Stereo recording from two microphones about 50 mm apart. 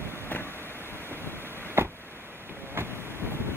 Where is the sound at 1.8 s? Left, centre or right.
Right.